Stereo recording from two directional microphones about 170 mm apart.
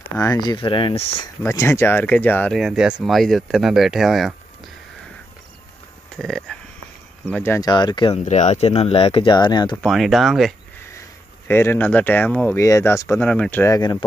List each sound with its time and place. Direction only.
0.2 s speech: 25° left (ahead or behind)
1.2 s speech: 15° left (ahead or behind)
2.5 s speech: 5° right (ahead or behind)
6.1 s speech: 5° left (ahead or behind)
7.7 s speech: 25° left (ahead or behind)
8.3 s speech: 40° left (ahead or behind); by 9.8 s 25° left (ahead or behind)
9.8 s speech: centre (ahead or behind)
10.9 s speech: 15° left (ahead or behind)
13.7 s speech: 25° left (ahead or behind)